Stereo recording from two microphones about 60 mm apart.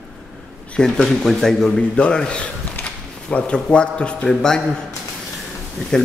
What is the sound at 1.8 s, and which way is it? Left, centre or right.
A man's voice, centre.